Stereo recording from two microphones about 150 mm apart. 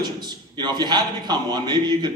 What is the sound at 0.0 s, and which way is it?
A man's voice, 30° right (ahead or behind).